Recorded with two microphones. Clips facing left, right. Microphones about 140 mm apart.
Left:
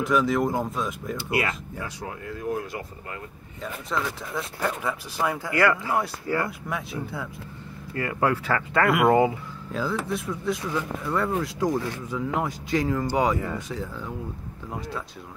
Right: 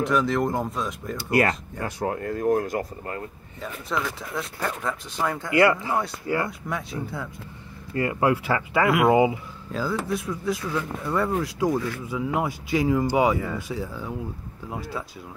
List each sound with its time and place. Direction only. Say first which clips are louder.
0.0 s speech: even; centre (ahead or behind)
1.1 s speech: right 6 dB; 40° right (ahead or behind)
3.6 s speech: even; centre (ahead or behind)
5.5 s speech: right 4 dB; 20° right (ahead or behind)
6.7 s speech: right 1 dB; centre (ahead or behind)
7.9 s speech: right 2 dB; 25° right (ahead or behind)
8.8 s speech: right 1 dB; centre (ahead or behind)